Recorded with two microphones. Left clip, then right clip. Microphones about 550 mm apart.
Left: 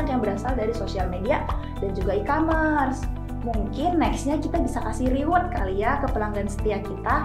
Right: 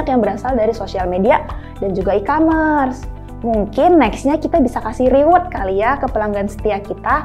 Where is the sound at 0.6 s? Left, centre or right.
Right.